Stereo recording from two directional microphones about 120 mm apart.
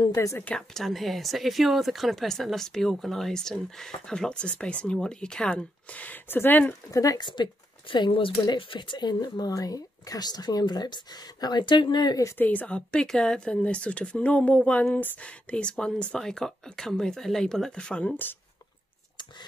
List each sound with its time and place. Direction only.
0.0 s a woman's voice: 25° left (ahead or behind)
0.4 s speech: 10° left (ahead or behind)
6.9 s speech: 30° left (ahead or behind)
12.4 s speech: 15° left (ahead or behind)